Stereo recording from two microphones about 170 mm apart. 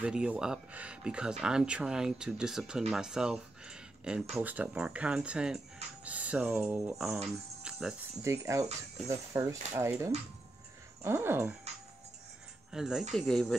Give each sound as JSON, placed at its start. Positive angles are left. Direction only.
{"t": 0.0, "sound": "speech", "side_deg": -5}
{"t": 7.2, "sound": "cricket", "side_deg": 0}
{"t": 8.2, "sound": "speech", "side_deg": -15}
{"t": 12.7, "sound": "speech", "side_deg": -5}